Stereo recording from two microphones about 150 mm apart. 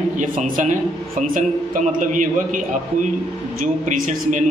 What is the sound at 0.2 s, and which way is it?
Speech, 55° right (ahead or behind).